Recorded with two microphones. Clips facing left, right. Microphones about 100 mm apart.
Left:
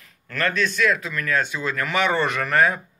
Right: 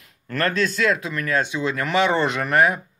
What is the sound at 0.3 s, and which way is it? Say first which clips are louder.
Speech: right 2 dB; 30° right (ahead or behind).